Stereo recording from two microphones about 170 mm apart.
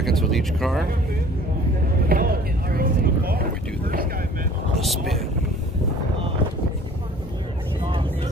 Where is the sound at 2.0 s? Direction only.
60° right (ahead or behind).